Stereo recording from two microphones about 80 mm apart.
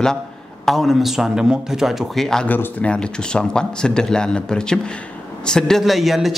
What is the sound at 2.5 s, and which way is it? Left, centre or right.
A man's voice, centre.